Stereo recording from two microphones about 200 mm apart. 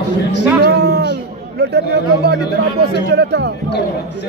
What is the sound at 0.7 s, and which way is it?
Music, 55° right (ahead or behind).